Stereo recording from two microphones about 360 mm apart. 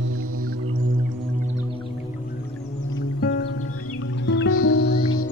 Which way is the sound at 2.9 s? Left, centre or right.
Left.